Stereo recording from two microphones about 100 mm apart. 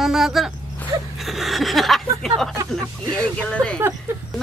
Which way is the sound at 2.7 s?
10° left (ahead or behind).